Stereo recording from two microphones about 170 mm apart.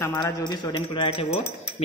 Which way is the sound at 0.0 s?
20° left (ahead or behind).